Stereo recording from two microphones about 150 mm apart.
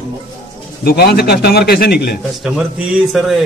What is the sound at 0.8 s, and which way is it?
A man's voice, 90° left.